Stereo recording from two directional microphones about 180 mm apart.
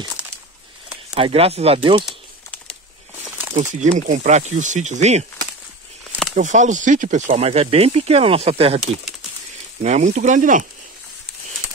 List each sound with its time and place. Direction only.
0.2 s a sound: 5° right (ahead or behind)
1.1 s speech: 30° right (ahead or behind)
3.5 s speech: 40° right (ahead or behind)
6.3 s speech: 45° right (ahead or behind)